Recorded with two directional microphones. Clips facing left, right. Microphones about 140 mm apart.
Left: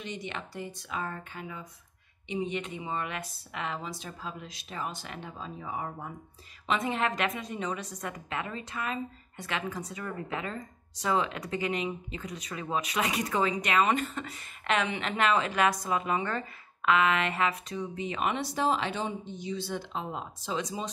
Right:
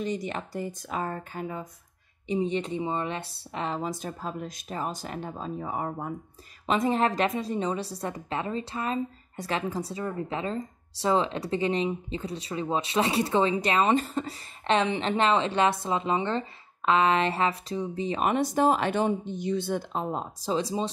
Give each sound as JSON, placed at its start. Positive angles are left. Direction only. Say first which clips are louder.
{"t": 0.0, "sound": "a woman's voice", "louder": "right 7 dB", "side_deg": -40}
{"t": 6.6, "sound": "a woman's voice", "louder": "right 5 dB", "side_deg": -35}